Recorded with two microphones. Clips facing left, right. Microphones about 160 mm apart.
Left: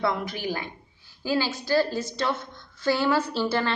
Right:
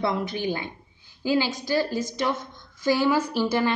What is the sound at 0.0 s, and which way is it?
A woman's voice, 25° right (ahead or behind).